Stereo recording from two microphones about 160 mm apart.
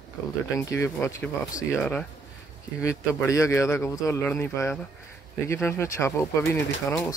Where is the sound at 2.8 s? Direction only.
20° left (ahead or behind).